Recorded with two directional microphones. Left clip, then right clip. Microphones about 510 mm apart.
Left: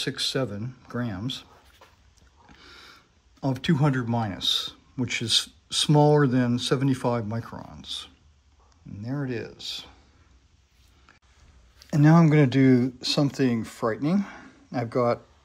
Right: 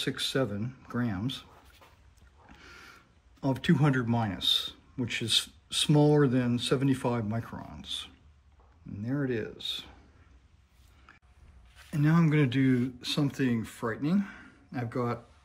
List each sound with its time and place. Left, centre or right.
0.0 s speech: centre
11.9 s speech: centre